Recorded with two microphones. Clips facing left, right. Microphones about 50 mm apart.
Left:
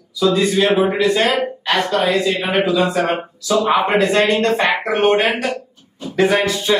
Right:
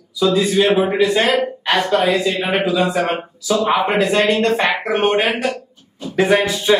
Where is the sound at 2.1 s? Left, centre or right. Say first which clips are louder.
Left 1 dB; centre.